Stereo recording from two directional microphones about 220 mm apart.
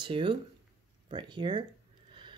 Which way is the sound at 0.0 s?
20° right (ahead or behind).